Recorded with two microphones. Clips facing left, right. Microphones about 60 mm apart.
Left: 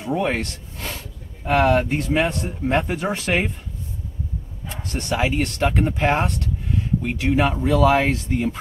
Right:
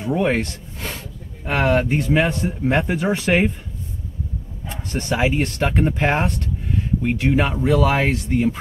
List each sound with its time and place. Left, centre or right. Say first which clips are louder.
0.0 s speech: right 3 dB; centre
5.1 s speech: right 2 dB; centre